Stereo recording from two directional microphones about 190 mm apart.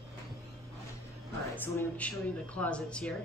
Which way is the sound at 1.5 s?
10° left (ahead or behind).